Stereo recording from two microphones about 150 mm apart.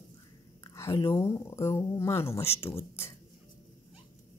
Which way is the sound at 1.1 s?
20° left (ahead or behind).